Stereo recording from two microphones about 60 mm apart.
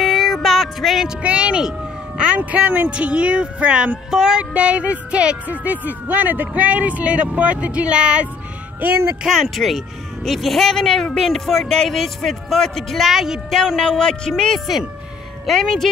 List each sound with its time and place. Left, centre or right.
0.0 s music: centre
1.0 s speech: centre
8.8 s speech: right
9.2 s a man's voice: centre
13.7 s a man's voice: centre